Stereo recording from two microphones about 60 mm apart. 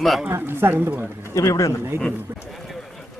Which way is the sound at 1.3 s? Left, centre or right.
Left.